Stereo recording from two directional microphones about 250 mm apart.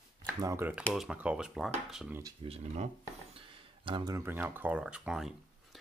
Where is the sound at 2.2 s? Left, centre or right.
Right.